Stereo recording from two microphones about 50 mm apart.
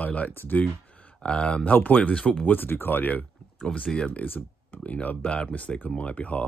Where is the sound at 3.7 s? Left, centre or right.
Centre.